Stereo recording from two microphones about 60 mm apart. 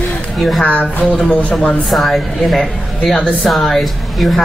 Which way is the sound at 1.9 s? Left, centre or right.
Centre.